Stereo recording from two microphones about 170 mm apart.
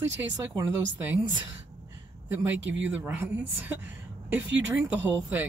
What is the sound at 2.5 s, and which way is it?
Speech, 90° right.